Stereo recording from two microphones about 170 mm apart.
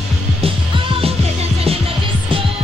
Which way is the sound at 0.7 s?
35° right (ahead or behind).